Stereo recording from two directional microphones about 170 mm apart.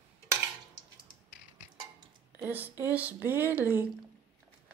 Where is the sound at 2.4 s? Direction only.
10° right (ahead or behind).